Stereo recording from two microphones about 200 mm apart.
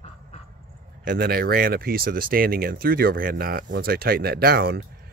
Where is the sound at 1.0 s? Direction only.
50° right (ahead or behind).